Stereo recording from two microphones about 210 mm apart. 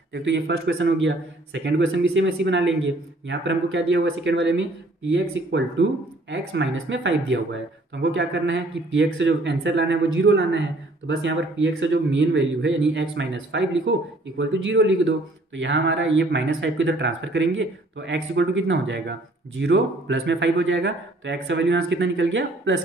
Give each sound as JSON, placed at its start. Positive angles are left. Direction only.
{"t": 0.1, "sound": "speech", "side_deg": -60}